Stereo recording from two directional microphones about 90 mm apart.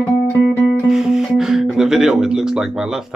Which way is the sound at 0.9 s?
5° right (ahead or behind).